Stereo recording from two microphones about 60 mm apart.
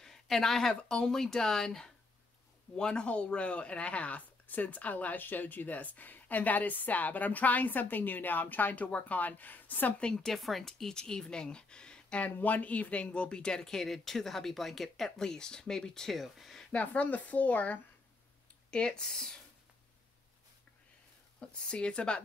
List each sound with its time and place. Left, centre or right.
0.0 s a woman's voice: centre; by 9.9 s left
9.9 s a woman's voice: centre
10.3 s a woman's voice: centre
16.7 s speech: left
18.7 s a woman's voice: centre
21.4 s a woman's voice: centre